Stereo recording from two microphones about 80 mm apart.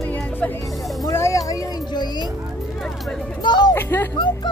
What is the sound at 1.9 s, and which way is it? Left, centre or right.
Music, left.